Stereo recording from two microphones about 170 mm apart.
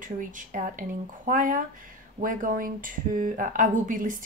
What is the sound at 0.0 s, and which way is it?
Speech, 50° right (ahead or behind).